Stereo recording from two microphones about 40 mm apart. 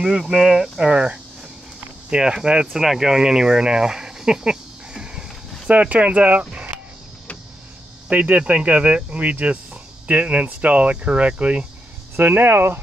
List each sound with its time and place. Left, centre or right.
0.2 s speech: centre
2.7 s speech: centre
5.7 s speech: right
8.1 s speech: right
12.4 s speech: right